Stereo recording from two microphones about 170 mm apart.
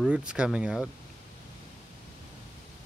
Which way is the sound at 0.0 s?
5° right (ahead or behind).